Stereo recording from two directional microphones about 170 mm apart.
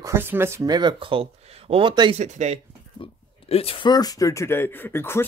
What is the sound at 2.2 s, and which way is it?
Speech, 40° right (ahead or behind).